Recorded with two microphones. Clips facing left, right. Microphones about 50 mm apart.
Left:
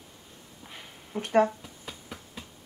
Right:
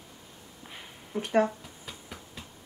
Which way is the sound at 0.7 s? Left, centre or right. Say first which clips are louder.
Right 1 dB; centre.